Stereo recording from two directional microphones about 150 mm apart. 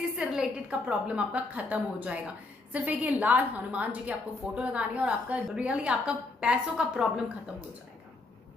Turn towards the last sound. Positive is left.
turn(degrees=-5)  # may be behind; listen again after turning